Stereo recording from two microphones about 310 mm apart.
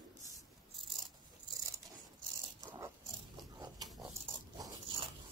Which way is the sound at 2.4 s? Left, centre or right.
Centre.